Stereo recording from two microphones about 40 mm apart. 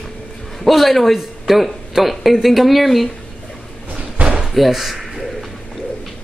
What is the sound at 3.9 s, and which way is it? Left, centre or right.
Slam, right.